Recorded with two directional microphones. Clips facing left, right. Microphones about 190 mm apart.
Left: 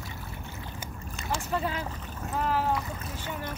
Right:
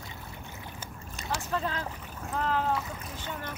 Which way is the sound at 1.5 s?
10° left (ahead or behind).